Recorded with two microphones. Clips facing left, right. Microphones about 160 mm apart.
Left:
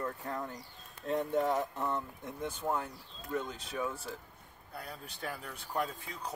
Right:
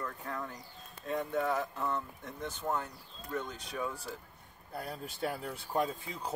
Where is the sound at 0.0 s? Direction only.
25° left (ahead or behind); by 4.2 s centre (ahead or behind).